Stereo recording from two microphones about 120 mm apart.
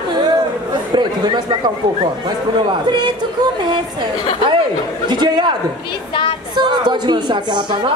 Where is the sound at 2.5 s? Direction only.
40° right (ahead or behind).